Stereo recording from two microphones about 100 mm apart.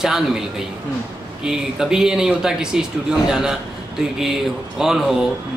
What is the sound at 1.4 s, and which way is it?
A man's voice, 5° right (ahead or behind).